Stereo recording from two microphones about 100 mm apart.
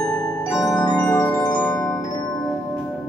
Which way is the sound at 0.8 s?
45° left (ahead or behind).